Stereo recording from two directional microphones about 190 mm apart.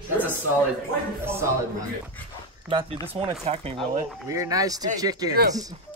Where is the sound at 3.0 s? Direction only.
30° right (ahead or behind).